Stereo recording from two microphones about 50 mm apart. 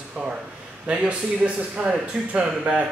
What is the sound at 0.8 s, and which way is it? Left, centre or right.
Speech, right.